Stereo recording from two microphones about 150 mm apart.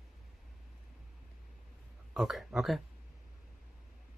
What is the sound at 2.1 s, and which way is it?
Speech, centre (ahead or behind).